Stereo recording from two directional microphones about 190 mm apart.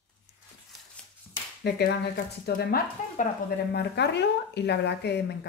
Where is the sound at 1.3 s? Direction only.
50° left (ahead or behind).